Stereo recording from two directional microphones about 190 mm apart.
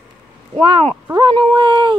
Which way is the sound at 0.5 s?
25° right (ahead or behind).